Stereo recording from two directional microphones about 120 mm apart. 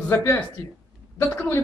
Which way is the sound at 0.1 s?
20° left (ahead or behind).